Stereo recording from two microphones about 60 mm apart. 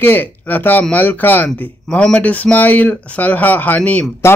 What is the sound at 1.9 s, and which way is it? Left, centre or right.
Speech, centre.